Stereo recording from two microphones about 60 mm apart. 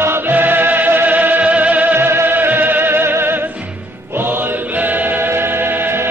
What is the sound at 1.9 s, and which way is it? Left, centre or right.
Music, right.